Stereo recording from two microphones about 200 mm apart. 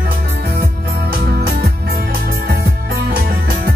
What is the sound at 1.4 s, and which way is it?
Music, 50° right (ahead or behind).